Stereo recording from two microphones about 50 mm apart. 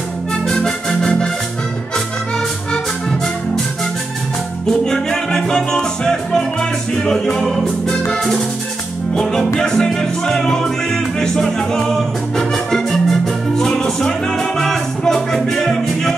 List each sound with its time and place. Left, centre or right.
0.3 s organ: centre
2.7 s music: centre
4.6 s music: centre